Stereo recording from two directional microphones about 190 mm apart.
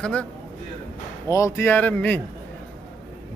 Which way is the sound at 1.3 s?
15° left (ahead or behind).